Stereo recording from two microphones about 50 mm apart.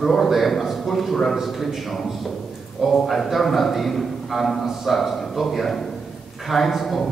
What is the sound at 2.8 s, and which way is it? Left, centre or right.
A man's voice, centre.